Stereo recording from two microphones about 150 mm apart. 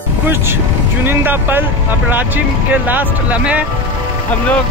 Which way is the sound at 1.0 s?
15° right (ahead or behind).